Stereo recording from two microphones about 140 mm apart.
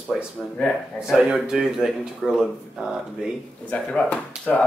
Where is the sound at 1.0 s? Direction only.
5° right (ahead or behind).